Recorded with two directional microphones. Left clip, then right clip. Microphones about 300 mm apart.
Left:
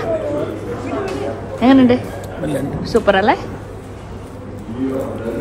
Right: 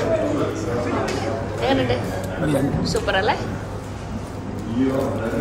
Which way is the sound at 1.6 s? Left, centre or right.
Left.